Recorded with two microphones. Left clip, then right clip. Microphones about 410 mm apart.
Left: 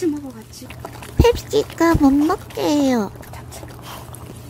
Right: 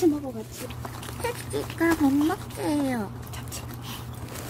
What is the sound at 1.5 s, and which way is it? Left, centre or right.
Speech, left.